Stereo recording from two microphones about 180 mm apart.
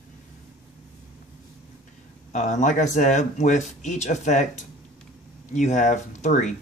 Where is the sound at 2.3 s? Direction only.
40° left (ahead or behind).